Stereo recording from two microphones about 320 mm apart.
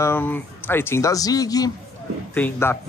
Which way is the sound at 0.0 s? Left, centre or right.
Centre.